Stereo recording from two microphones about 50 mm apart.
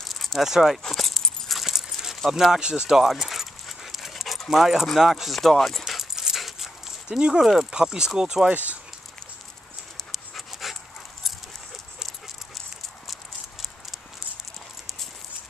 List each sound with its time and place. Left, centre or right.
0.0 s a sound: centre
0.4 s speech: centre
0.8 s dog: centre
1.7 s keys jangling: centre
2.7 s speech: centre
3.1 s dog: centre
4.5 s speech: centre
4.8 s dog: centre
7.1 s speech: centre
10.1 s dog: centre
13.0 s clip-clop: centre